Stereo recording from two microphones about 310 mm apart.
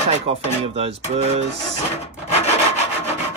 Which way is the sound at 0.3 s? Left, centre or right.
Centre.